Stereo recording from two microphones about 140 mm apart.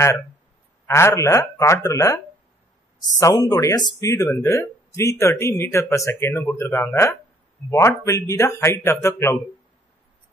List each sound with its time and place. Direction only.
0.8 s speech: 20° left (ahead or behind)
3.2 s speech: 25° left (ahead or behind)